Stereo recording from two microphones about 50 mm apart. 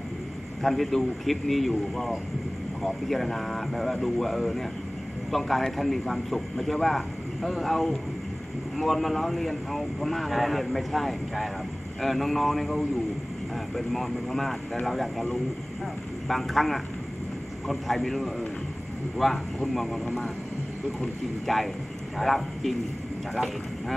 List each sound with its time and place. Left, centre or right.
0.6 s speech: centre
21.5 s speech: centre